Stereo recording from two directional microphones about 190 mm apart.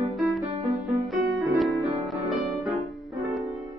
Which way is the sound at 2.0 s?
Centre (ahead or behind).